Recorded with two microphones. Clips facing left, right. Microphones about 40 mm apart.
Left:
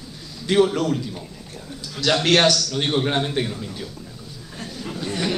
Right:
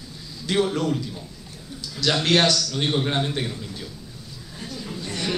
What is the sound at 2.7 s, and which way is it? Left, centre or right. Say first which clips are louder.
A man's voice: left 2 dB; centre.